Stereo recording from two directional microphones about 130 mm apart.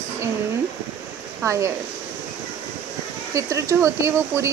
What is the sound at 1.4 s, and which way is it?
Speech, 25° right (ahead or behind).